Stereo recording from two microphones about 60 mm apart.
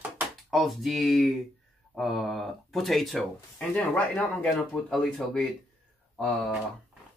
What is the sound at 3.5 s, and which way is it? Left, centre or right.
Speech, left.